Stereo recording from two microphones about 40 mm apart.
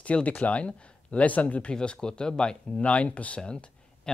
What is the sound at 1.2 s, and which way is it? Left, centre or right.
Speech, left.